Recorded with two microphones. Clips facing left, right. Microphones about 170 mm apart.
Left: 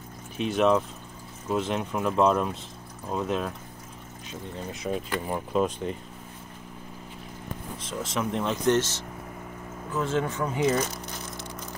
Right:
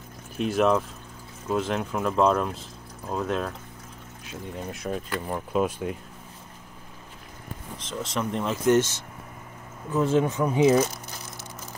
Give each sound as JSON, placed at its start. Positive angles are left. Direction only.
{"t": 0.4, "sound": "speech", "side_deg": 0}
{"t": 7.9, "sound": "speech", "side_deg": 5}
{"t": 9.9, "sound": "speech", "side_deg": -15}